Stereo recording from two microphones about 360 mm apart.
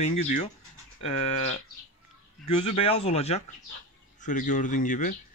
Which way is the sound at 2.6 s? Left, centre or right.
Centre.